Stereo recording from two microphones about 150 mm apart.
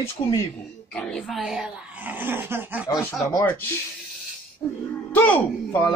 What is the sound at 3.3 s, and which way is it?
Speech, 15° left (ahead or behind).